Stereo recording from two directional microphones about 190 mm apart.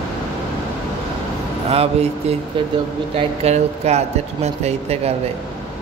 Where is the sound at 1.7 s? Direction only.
35° right (ahead or behind).